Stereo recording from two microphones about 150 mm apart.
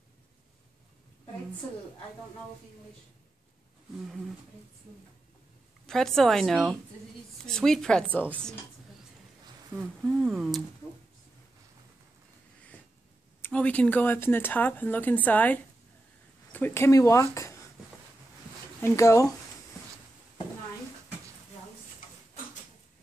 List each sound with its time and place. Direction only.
5.9 s a woman's voice: 5° left (ahead or behind)
10.0 s a woman's voice: centre (ahead or behind)
13.4 s speech: 10° left (ahead or behind)
18.8 s speech: 20° left (ahead or behind)